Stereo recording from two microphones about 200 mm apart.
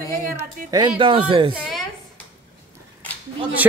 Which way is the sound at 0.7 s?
20° right (ahead or behind).